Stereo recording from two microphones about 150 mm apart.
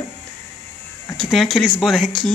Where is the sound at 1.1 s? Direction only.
Centre (ahead or behind).